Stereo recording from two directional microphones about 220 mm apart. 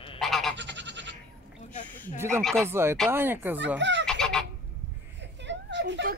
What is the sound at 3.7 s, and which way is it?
Fowl, 55° right (ahead or behind).